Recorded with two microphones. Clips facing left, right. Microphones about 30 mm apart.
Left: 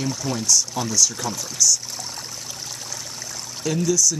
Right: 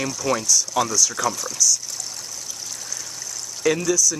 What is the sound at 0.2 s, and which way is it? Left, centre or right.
Speech, right.